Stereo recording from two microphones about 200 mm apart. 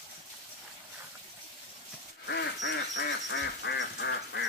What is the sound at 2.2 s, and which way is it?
Quack, 60° left (ahead or behind).